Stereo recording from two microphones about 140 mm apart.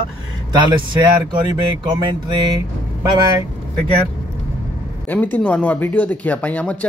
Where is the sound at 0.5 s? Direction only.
35° right (ahead or behind).